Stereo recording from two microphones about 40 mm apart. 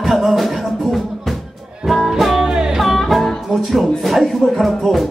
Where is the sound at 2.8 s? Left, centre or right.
Centre.